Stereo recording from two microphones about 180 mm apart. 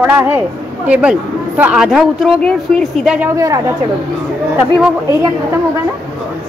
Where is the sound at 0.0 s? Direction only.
10° right (ahead or behind).